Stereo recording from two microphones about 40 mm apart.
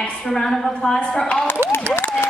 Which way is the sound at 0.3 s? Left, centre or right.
Centre.